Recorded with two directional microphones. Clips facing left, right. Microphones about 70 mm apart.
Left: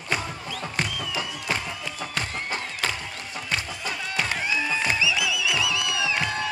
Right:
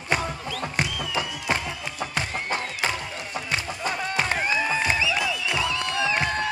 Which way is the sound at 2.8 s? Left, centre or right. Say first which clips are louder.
Right 2 dB; right.